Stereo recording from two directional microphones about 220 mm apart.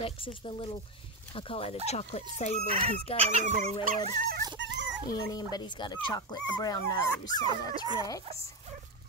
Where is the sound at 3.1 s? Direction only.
30° right (ahead or behind).